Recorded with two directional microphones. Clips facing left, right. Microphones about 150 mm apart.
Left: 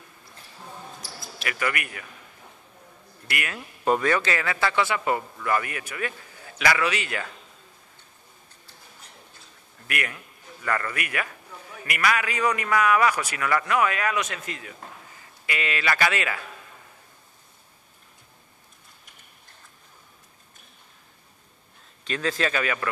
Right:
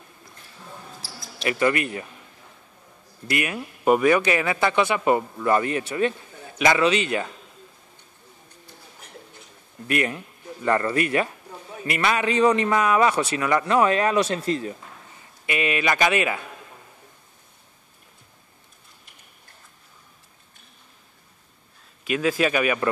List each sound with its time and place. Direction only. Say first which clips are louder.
1.4 s a man's voice: right 8 dB; 25° right (ahead or behind)
3.3 s a man's voice: right 6 dB; 20° right (ahead or behind)
9.8 s a man's voice: right 8 dB; 25° right (ahead or behind)
15.4 s a man's voice: right 4 dB; 20° right (ahead or behind)
22.0 s speech: right 5 dB; 10° right (ahead or behind)